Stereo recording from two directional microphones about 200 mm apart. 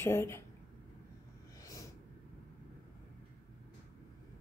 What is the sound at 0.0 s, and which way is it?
Speech, 15° left (ahead or behind).